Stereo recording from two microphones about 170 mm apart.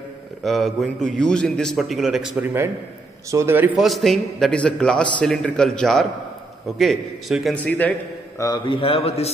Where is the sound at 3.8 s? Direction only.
Centre (ahead or behind).